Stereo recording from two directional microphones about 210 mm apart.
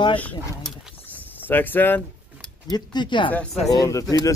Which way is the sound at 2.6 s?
20° left (ahead or behind).